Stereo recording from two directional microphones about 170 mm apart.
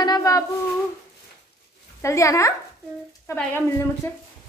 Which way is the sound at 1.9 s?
15° left (ahead or behind).